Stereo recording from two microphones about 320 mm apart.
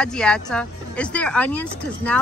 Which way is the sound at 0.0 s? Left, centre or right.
Centre.